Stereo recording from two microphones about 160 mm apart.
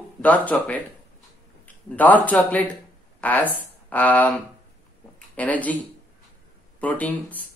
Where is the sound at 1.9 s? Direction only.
10° left (ahead or behind).